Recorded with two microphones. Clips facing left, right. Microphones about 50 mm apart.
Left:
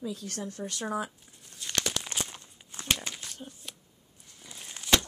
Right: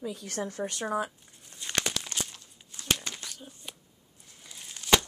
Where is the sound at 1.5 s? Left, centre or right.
Centre.